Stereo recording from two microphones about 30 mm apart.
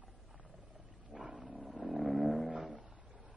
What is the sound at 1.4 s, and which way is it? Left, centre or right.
Wild animals, centre.